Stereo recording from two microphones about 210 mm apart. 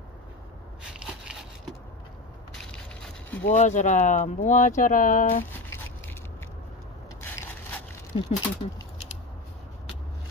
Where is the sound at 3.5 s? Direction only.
35° left (ahead or behind).